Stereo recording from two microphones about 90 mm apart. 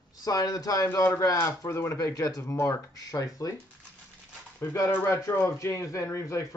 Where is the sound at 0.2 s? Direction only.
45° left (ahead or behind).